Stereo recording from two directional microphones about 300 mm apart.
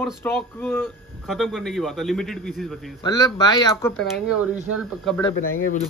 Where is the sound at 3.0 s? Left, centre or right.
Centre.